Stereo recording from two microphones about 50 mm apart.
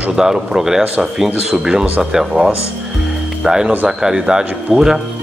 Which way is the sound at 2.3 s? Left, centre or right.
Right.